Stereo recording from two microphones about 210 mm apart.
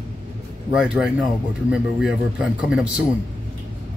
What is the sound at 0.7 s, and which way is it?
Speech, 5° right (ahead or behind).